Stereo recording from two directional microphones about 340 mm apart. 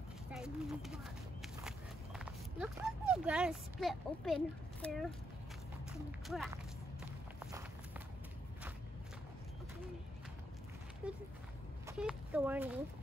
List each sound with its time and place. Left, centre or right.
0.3 s speech: centre
1.6 s horse: centre
4.8 s speech: centre
11.0 s speech: centre